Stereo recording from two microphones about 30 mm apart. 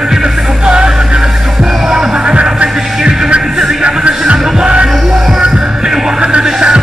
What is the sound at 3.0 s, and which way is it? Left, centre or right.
Music, centre.